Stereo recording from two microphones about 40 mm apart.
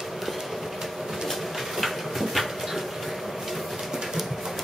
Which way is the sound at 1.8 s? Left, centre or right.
Centre.